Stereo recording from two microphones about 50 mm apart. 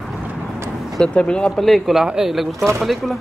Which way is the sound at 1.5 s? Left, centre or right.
Centre.